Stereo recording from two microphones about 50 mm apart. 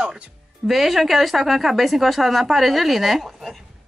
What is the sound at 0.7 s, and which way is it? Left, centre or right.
Speech, centre.